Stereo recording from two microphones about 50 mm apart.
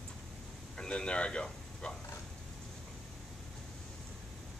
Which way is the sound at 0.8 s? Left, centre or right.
Centre.